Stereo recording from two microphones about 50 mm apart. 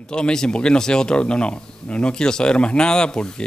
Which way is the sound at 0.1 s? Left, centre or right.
Centre.